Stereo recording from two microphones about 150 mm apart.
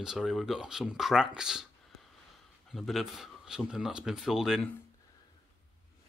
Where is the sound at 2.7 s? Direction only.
Centre (ahead or behind).